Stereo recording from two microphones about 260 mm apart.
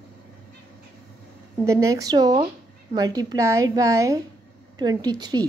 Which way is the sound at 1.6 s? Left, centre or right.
Centre.